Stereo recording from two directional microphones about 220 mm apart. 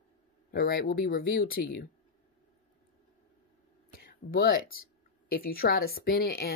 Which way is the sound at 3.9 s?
40° left (ahead or behind).